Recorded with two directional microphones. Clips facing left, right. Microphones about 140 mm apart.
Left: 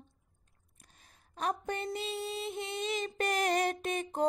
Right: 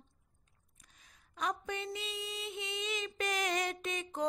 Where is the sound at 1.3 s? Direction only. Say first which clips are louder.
Left 3 dB; 35° left (ahead or behind).